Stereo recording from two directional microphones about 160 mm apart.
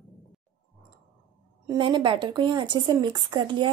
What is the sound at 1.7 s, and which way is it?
Speech, 30° right (ahead or behind).